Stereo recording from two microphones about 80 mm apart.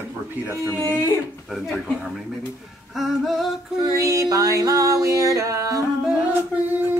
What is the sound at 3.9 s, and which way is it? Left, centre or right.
Music, right.